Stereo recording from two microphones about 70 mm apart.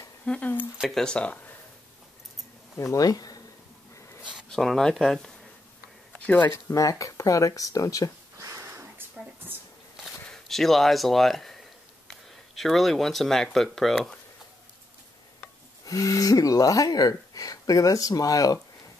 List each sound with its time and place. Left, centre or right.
0.2 s speech: centre
0.7 s speech: centre
1.0 s speech: centre
2.8 s speech: left
4.2 s a sound: centre
4.5 s speech: centre
6.2 s speech: left
6.7 s speech: left
8.4 s a sound: right
10.5 s speech: centre
15.8 s speech: left